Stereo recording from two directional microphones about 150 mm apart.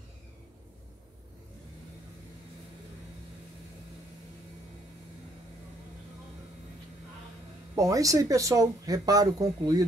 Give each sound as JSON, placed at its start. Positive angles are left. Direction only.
{"t": 7.7, "sound": "speech", "side_deg": -20}